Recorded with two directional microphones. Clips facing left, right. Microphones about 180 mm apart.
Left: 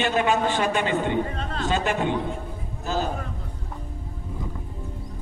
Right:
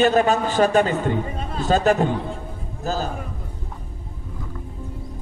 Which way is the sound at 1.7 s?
40° right (ahead or behind).